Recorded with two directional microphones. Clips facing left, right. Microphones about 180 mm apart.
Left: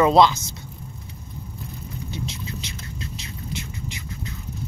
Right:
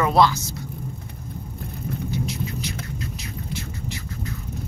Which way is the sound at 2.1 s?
25° left (ahead or behind).